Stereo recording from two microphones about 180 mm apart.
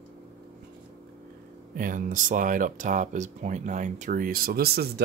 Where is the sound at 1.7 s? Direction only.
50° right (ahead or behind).